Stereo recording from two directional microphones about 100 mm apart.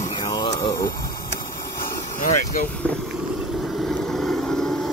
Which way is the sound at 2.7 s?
10° left (ahead or behind).